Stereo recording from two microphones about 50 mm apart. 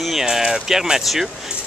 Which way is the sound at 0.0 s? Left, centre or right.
Centre.